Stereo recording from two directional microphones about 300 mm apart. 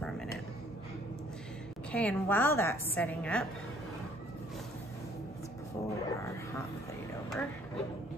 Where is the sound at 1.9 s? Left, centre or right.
Centre.